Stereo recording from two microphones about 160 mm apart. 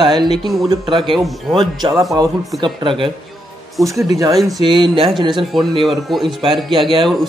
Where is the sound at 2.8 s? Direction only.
30° right (ahead or behind).